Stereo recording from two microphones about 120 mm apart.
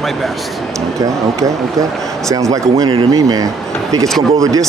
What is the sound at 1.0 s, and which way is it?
Speech, 30° right (ahead or behind).